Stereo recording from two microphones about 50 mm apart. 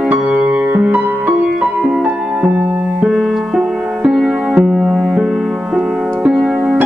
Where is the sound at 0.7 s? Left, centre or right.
Right.